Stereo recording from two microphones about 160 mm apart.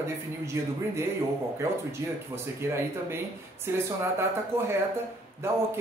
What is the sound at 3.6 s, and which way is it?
Speech, 15° right (ahead or behind).